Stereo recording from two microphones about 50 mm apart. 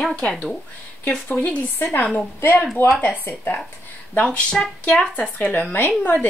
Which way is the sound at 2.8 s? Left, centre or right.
Left.